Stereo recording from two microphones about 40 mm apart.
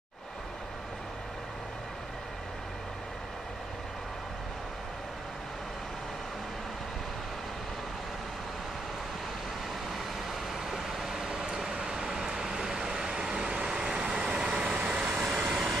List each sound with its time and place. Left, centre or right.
10.7 s vehicle: centre
15.5 s vehicle: centre